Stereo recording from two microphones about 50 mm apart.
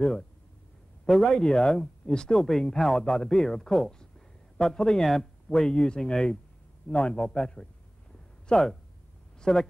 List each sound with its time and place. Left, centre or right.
1.1 s a man's voice: centre; by 7.7 s left
8.5 s speech: centre